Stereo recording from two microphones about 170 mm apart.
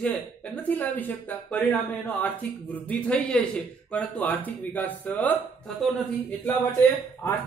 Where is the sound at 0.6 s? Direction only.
10° left (ahead or behind).